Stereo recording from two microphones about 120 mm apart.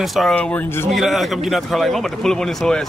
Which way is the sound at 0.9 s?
Centre (ahead or behind).